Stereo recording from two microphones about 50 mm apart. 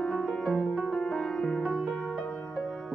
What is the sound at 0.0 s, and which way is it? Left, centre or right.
Music, centre.